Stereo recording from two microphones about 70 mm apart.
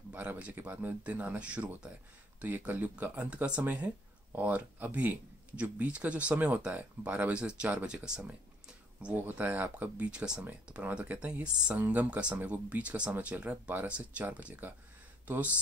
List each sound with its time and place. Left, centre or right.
0.1 s speech: right
9.1 s speech: right
10.1 s speech: centre